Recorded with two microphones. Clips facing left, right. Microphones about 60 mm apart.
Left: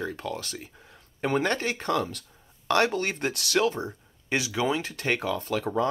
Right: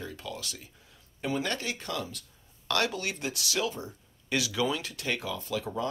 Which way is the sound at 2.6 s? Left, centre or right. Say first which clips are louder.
Left 6 dB; left.